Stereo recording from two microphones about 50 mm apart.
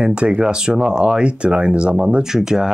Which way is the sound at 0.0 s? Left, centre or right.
Right.